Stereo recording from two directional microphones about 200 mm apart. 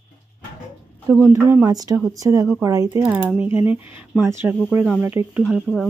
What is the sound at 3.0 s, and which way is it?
A woman's voice, 5° right (ahead or behind).